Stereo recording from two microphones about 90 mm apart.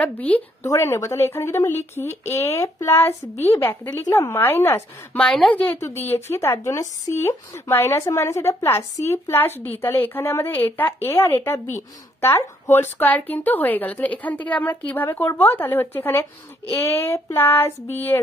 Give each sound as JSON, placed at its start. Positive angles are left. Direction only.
{"t": 0.0, "sound": "a woman's voice", "side_deg": 15}
{"t": 0.7, "sound": "a woman's voice", "side_deg": 35}
{"t": 5.1, "sound": "a woman's voice", "side_deg": 10}
{"t": 5.8, "sound": "a woman's voice", "side_deg": 30}